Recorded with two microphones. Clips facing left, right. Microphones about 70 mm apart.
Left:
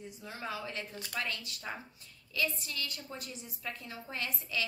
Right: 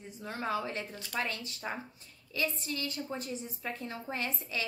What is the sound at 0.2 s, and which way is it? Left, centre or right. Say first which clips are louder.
A woman's voice: right 6 dB; right.